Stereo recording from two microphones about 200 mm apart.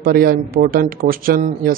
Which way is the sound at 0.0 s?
50° right (ahead or behind).